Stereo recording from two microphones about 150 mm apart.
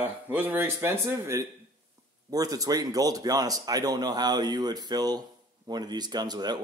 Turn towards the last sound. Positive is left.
turn(degrees=-25)  # may be behind; listen again after turning